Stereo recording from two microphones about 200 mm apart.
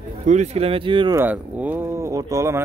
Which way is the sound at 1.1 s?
10° right (ahead or behind).